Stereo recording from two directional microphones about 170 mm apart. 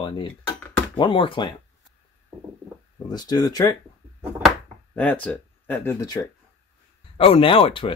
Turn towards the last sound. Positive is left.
turn(degrees=30)  # may be behind; listen again after turning